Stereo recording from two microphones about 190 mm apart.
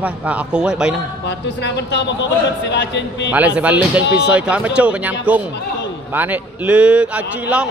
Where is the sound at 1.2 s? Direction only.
65° left (ahead or behind).